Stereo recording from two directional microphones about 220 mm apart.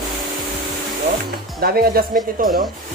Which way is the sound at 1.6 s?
40° right (ahead or behind).